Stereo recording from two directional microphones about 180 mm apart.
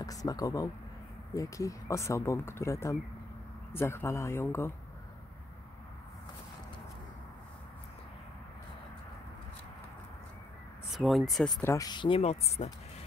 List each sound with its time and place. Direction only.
0.0 s speech: 20° left (ahead or behind)
10.9 s speech: centre (ahead or behind)
11.6 s speech: 20° left (ahead or behind); by 12.7 s 35° left (ahead or behind)